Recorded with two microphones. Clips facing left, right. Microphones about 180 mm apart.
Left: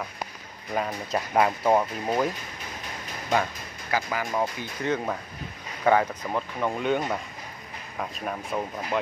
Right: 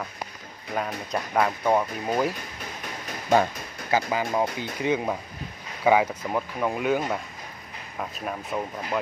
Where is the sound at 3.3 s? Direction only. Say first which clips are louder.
Right 5 dB; 25° right (ahead or behind).